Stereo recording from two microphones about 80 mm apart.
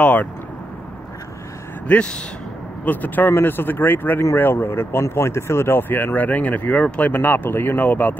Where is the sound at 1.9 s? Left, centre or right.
Centre.